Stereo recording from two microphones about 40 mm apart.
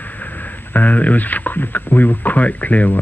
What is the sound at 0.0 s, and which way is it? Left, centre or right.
Speech, left.